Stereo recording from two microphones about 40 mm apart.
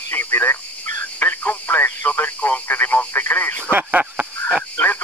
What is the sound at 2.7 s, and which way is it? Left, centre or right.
Telephone, left.